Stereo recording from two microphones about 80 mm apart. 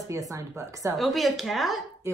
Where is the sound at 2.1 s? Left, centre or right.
Right.